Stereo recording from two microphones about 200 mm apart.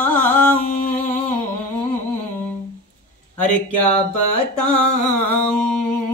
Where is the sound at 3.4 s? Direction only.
5° left (ahead or behind).